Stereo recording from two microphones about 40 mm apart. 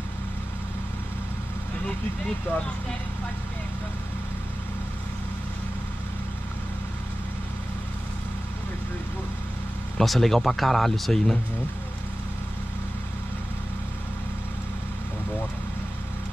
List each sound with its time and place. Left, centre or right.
2.5 s speech: left
9.9 s speech: centre